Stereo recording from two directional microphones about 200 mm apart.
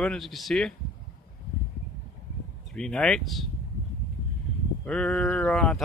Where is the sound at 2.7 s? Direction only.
5° left (ahead or behind).